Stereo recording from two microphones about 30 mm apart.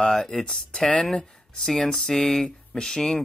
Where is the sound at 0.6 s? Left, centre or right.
Left.